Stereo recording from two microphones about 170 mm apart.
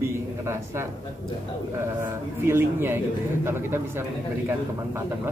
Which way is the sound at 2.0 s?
15° right (ahead or behind).